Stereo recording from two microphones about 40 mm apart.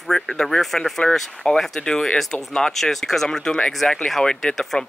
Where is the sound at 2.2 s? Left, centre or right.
Centre.